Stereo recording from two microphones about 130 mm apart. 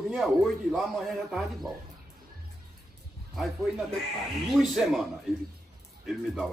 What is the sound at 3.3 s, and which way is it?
A man's voice, centre (ahead or behind).